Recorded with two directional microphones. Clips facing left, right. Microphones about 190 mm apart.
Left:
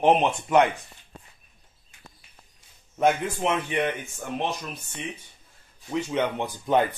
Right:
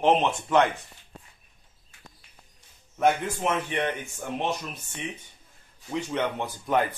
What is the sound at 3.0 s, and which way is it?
Speech, 10° left (ahead or behind).